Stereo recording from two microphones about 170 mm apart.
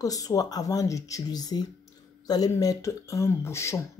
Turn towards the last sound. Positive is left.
turn(degrees=15)  # may be behind; listen again after turning